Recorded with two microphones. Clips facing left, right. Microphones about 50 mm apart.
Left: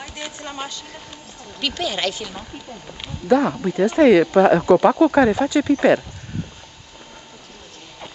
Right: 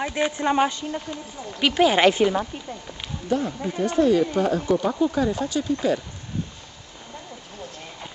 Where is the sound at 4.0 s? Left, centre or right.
Left.